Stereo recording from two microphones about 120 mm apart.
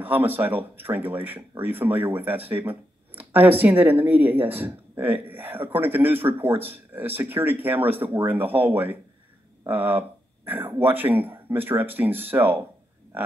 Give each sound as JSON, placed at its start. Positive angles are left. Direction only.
{"t": 0.0, "sound": "speech", "side_deg": -15}